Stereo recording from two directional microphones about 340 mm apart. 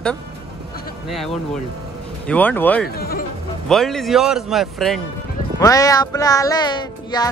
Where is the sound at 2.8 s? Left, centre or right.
Left.